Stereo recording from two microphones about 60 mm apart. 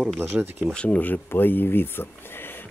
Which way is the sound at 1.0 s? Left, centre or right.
Left.